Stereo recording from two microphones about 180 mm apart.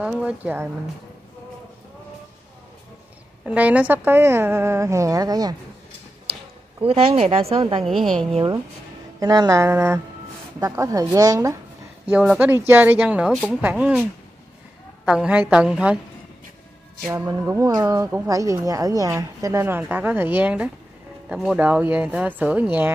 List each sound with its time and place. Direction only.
0.0 s speech: 5° right (ahead or behind)
3.4 s speech: 10° right (ahead or behind)
6.8 s speech: 30° right (ahead or behind)
7.8 s a woman's voice: centre (ahead or behind)
9.2 s a woman's voice: 20° right (ahead or behind)
12.1 s speech: 5° right (ahead or behind)
15.0 s a woman's voice: 5° right (ahead or behind)
17.1 s speech: 15° right (ahead or behind)